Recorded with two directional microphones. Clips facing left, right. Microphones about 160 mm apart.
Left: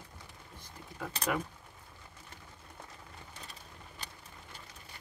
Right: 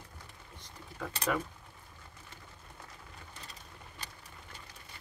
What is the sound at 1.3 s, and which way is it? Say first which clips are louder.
Speech: right 1 dB; 10° left (ahead or behind).